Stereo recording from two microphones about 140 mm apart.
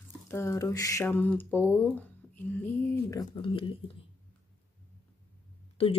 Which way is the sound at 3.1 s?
25° left (ahead or behind).